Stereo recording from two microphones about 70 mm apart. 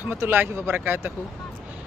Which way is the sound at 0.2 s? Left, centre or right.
Right.